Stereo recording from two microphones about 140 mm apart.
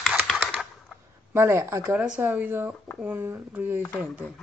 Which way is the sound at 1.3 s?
20° right (ahead or behind).